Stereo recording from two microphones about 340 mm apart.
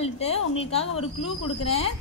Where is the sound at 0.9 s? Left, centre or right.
Left.